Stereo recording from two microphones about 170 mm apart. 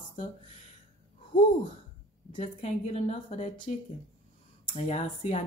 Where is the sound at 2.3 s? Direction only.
45° left (ahead or behind).